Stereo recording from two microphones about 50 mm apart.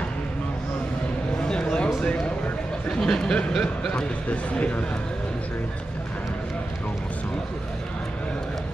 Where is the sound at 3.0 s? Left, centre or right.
Centre.